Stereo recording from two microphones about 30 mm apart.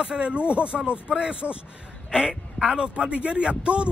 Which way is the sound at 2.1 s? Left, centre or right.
Centre.